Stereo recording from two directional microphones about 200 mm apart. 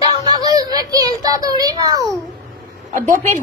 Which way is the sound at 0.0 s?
20° right (ahead or behind).